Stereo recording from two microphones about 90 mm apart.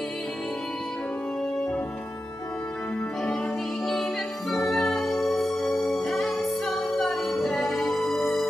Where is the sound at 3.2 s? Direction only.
10° left (ahead or behind).